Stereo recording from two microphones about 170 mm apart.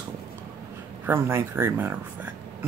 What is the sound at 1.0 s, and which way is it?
Speech, 15° right (ahead or behind).